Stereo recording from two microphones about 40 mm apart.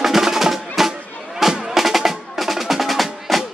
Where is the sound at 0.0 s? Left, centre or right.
Centre.